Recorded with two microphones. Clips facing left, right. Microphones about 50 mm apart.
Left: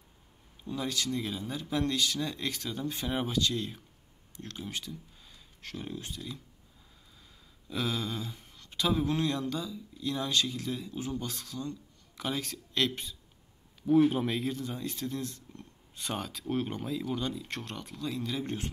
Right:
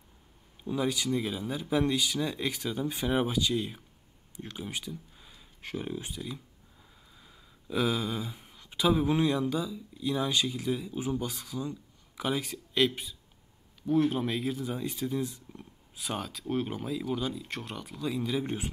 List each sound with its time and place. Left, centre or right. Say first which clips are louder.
0.7 s speech: right 4 dB; centre